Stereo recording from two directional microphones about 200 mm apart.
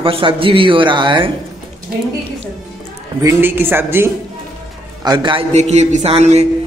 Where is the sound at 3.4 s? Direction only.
10° right (ahead or behind).